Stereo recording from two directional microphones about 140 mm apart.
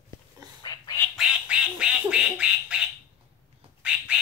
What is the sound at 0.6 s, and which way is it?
Duck, 30° left (ahead or behind).